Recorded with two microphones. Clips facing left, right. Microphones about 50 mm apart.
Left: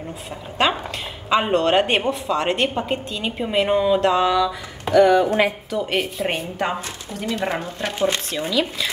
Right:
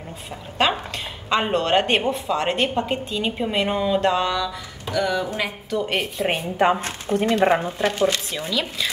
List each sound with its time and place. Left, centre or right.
0.6 s a woman's voice: centre
4.9 s a woman's voice: left
5.7 s a woman's voice: centre
6.8 s speech: right
7.8 s a woman's voice: centre